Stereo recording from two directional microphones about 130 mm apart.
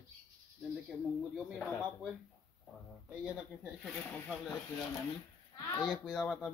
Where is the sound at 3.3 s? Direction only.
5° right (ahead or behind).